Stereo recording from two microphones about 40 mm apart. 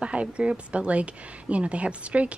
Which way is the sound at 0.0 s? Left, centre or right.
Right.